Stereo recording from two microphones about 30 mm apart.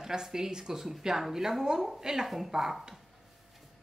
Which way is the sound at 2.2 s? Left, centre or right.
Centre.